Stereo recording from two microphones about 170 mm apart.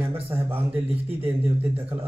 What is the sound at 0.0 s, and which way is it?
Speech, 15° right (ahead or behind).